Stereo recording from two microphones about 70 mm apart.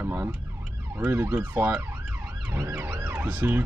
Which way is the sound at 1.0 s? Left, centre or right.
Right.